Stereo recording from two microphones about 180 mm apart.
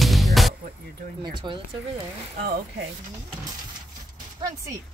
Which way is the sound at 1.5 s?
25° right (ahead or behind).